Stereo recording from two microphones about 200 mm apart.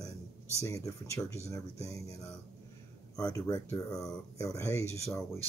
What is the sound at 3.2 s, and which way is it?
Speech, 15° left (ahead or behind).